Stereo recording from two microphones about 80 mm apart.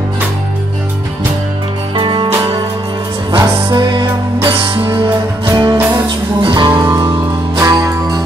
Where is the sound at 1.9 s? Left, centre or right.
Right.